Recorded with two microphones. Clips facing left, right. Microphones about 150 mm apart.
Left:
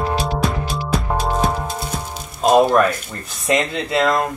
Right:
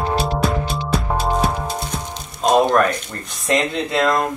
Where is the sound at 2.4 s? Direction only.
5° left (ahead or behind).